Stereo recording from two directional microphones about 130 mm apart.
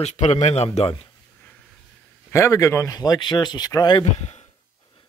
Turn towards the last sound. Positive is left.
turn(degrees=35)  # may be behind; listen again after turning